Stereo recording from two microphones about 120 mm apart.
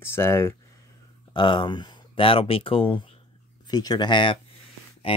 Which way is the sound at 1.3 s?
40° left (ahead or behind).